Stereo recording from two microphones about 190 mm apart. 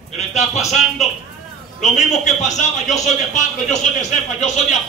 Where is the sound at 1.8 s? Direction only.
35° left (ahead or behind).